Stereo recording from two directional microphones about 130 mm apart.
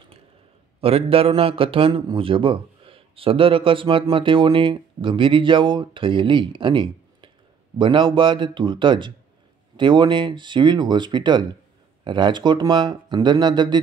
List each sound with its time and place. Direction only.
0.7 s a man's voice: 50° right (ahead or behind)